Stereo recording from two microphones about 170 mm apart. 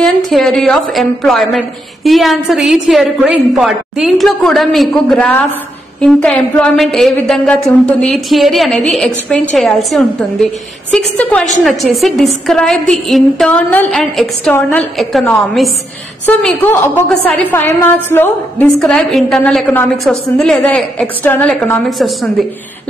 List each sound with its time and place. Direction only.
0.0 s a woman's voice: centre (ahead or behind)
16.3 s a woman's voice: 10° left (ahead or behind)